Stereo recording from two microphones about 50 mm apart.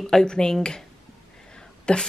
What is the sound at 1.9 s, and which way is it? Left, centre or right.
Speech, centre.